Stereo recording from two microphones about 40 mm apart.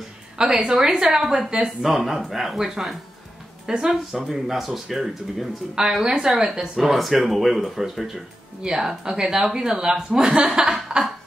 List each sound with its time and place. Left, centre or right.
0.4 s a woman's voice: right
0.7 s speech: centre
6.9 s speech: centre
8.6 s speech: centre